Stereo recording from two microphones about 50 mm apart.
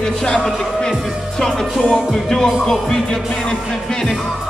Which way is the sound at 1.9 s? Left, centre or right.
Centre.